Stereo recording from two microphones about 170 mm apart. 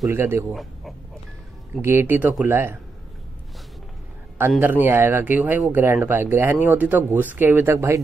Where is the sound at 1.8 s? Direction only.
15° right (ahead or behind).